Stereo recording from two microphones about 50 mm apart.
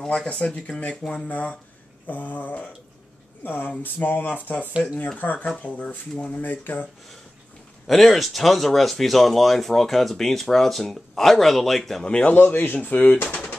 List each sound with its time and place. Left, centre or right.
0.0 s speech: centre
6.4 s speech: left
7.8 s speech: centre
12.0 s speech: centre
12.3 s speech: left